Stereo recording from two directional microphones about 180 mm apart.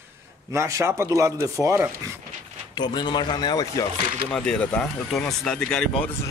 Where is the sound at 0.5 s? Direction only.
15° right (ahead or behind).